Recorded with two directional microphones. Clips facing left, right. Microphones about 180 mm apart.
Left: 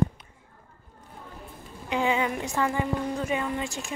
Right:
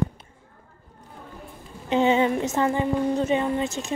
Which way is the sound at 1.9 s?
25° right (ahead or behind).